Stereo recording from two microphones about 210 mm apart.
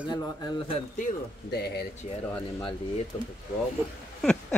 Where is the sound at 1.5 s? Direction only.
50° left (ahead or behind).